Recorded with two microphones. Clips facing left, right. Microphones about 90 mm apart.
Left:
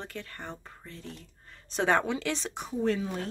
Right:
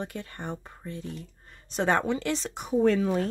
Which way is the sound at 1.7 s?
Centre (ahead or behind).